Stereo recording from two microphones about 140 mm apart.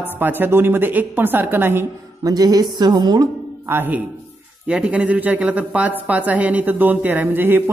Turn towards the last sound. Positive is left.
turn(degrees=-15)  # may be behind; listen again after turning